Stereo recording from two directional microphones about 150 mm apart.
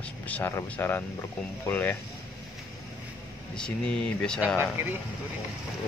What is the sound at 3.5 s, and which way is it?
Speech, 5° left (ahead or behind).